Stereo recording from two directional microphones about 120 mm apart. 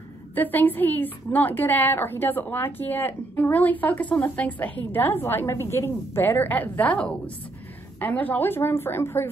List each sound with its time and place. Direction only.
0.3 s a woman's voice: 15° left (ahead or behind)